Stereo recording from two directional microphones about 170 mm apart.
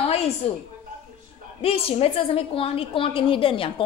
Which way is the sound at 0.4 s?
35° left (ahead or behind).